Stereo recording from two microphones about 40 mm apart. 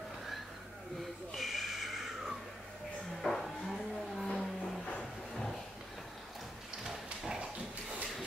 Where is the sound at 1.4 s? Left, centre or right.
Centre.